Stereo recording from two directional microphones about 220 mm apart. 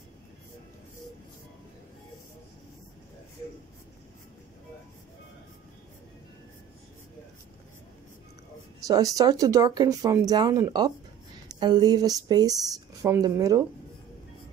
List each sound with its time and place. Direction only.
8.8 s speech: 15° right (ahead or behind)